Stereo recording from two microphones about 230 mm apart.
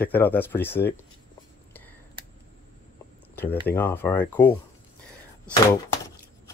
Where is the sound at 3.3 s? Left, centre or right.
Centre.